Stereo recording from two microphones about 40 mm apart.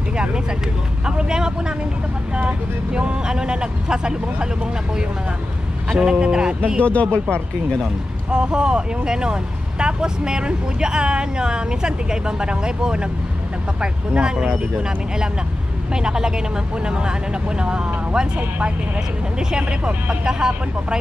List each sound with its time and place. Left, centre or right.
0.1 s vehicle: right
1.0 s speech: centre
5.9 s speech: centre
6.8 s speech: left
7.8 s speech: right